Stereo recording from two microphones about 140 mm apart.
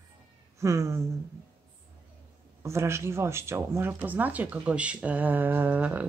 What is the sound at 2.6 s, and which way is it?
Speech, 20° right (ahead or behind).